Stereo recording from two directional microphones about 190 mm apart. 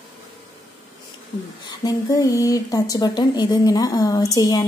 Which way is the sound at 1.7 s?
20° left (ahead or behind).